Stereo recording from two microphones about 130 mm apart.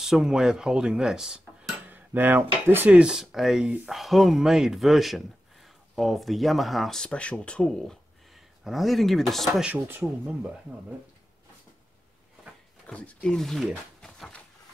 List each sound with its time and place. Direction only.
0.0 s cutlery: 5° right (ahead or behind)
9.7 s speech: 15° right (ahead or behind)
12.8 s speech: 10° left (ahead or behind)